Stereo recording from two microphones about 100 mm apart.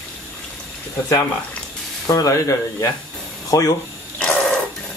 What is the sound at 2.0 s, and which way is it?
Speech, 35° left (ahead or behind).